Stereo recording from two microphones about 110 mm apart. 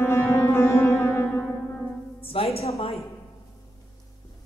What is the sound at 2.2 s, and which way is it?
Music, 55° left (ahead or behind).